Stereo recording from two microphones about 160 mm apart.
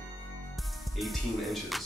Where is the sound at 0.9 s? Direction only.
Centre (ahead or behind).